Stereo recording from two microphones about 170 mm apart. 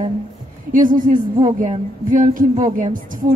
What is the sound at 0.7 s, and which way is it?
Speech, 50° right (ahead or behind).